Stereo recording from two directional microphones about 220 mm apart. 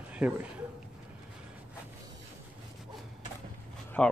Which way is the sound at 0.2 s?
5° right (ahead or behind).